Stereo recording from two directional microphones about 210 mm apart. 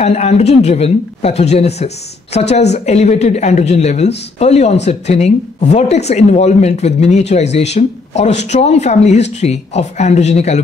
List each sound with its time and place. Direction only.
0.0 s speech: 30° left (ahead or behind)